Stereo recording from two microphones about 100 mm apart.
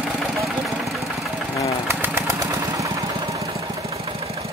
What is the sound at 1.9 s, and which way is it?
Engine, 25° right (ahead or behind).